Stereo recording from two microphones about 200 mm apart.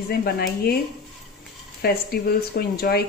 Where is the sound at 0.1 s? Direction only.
50° left (ahead or behind).